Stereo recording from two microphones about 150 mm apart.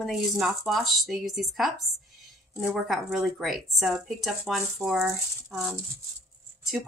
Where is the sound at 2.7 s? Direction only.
Centre (ahead or behind).